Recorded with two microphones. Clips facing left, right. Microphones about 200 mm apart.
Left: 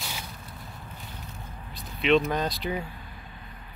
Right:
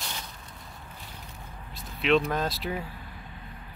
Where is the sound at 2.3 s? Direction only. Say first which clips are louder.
Left 1 dB; centre (ahead or behind).